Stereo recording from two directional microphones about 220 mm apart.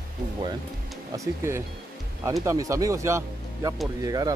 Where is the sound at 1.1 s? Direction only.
15° right (ahead or behind).